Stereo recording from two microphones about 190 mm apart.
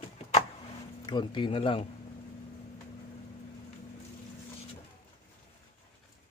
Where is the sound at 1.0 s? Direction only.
25° left (ahead or behind).